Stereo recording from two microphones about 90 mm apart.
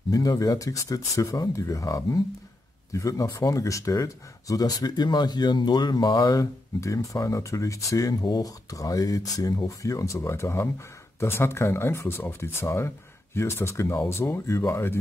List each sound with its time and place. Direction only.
0.1 s speech: 40° left (ahead or behind)